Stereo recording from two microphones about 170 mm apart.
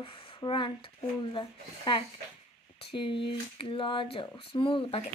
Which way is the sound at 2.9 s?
30° left (ahead or behind).